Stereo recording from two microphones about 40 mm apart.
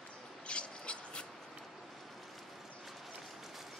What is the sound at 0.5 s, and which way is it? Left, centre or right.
Mouse, left.